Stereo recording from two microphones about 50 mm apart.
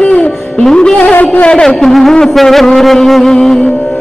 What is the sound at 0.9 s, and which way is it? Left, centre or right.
Music, left.